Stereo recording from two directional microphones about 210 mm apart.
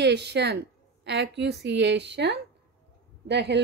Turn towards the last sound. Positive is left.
turn(degrees=-55)  # may be behind; listen again after turning